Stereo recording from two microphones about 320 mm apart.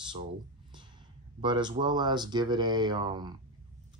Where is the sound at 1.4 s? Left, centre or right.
Centre.